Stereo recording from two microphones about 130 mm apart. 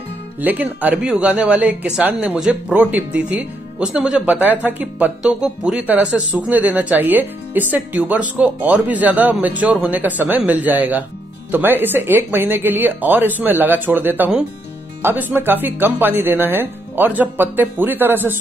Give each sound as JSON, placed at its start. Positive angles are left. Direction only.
{"t": 0.4, "sound": "speech", "side_deg": -15}